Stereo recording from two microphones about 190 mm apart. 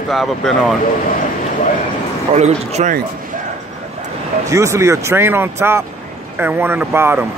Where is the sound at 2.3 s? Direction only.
35° right (ahead or behind).